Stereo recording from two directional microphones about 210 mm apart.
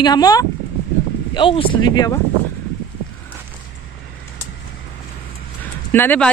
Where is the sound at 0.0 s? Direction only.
20° left (ahead or behind).